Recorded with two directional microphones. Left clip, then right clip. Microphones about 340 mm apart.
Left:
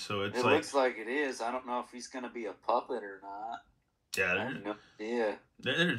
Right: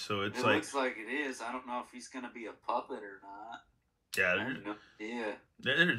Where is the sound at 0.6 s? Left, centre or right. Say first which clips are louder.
Left 4 dB; left.